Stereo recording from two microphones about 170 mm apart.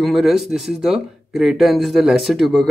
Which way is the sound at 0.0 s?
Centre (ahead or behind).